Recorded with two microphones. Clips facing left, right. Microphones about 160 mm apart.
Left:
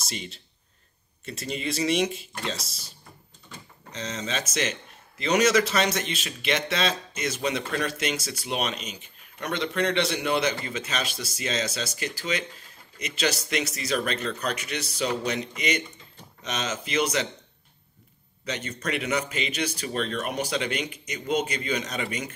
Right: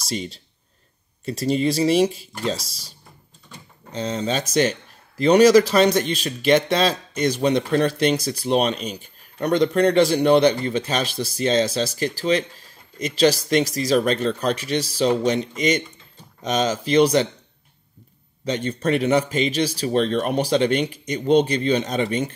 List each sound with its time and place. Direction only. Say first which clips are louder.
1.4 s speech: right 9 dB; 35° right (ahead or behind)
2.1 s speech: right 7 dB; centre (ahead or behind)
3.9 s speech: right 8 dB; 35° right (ahead or behind)
16.5 s speech: right 10 dB; 35° right (ahead or behind)
18.4 s speech: right 9 dB; 30° right (ahead or behind)